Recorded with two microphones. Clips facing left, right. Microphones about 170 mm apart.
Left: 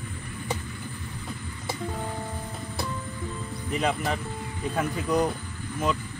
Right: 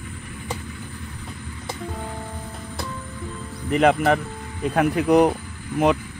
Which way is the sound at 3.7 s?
65° right (ahead or behind).